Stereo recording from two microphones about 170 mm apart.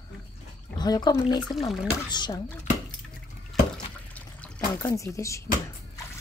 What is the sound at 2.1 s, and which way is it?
Speech, 25° left (ahead or behind).